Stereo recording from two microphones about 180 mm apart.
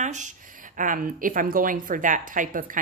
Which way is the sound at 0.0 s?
40° right (ahead or behind).